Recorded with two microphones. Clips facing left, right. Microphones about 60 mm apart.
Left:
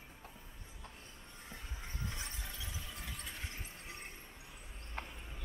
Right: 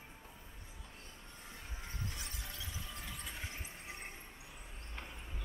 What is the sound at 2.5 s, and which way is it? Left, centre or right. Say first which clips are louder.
Squeal: even; centre.